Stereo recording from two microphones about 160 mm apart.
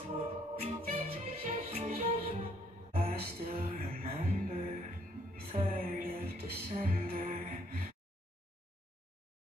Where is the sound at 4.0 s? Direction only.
45° right (ahead or behind).